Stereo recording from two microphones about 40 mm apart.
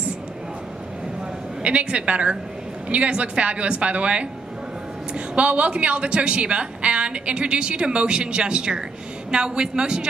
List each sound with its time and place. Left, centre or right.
1.6 s a woman's voice: right